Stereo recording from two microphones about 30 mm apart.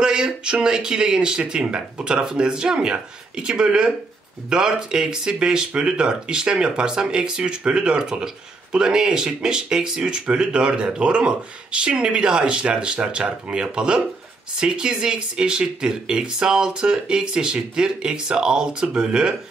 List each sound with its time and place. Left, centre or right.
0.0 s speech: right
10.3 s speech: right